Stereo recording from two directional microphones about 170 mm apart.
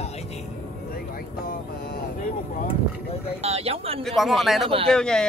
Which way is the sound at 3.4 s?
35° right (ahead or behind).